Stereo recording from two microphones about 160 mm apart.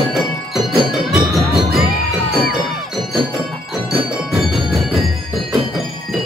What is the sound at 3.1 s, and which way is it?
Tubular bells, centre (ahead or behind).